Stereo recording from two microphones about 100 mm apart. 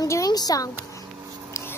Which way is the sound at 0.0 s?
35° left (ahead or behind).